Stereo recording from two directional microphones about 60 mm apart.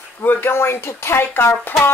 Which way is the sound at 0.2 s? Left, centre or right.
Left.